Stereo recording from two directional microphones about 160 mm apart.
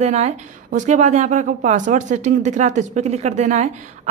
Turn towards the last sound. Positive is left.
turn(degrees=-45)  # may be behind; listen again after turning